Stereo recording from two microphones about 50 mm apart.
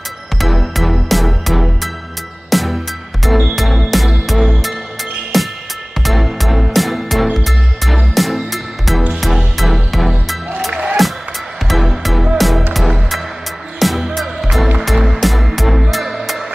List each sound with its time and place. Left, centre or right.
0.4 s music: centre
10.7 s music: right
11.6 s music: centre